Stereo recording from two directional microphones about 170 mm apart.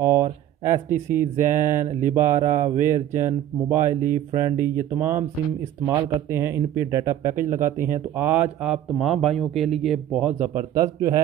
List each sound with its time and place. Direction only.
0.0 s speech: 15° right (ahead or behind)
1.3 s speech: 50° right (ahead or behind)
1.6 s speech: 15° right (ahead or behind)